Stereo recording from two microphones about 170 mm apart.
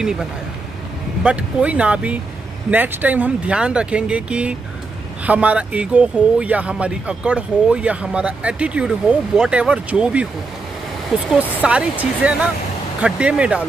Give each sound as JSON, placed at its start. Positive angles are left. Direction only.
{"t": 0.0, "sound": "speech", "side_deg": -5}